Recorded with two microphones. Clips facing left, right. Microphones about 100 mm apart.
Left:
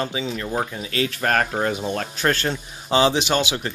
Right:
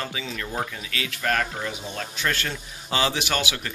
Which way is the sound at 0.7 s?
35° left (ahead or behind).